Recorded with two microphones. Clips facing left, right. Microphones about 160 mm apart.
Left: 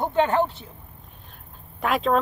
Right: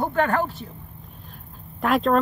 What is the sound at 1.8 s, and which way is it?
Speech, centre (ahead or behind).